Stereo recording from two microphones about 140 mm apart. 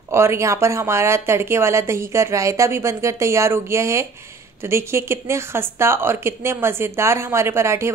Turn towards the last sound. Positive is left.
turn(degrees=-20)  # may be behind; listen again after turning